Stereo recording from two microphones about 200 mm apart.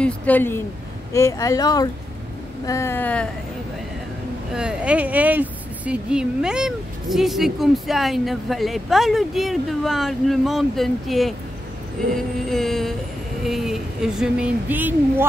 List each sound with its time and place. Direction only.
0.0 s speech: 10° left (ahead or behind)
4.6 s speech: 5° right (ahead or behind)
12.4 s speech: centre (ahead or behind)